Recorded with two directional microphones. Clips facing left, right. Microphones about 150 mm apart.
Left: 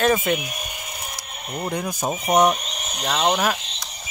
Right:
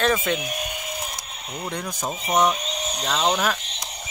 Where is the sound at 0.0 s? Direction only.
10° left (ahead or behind).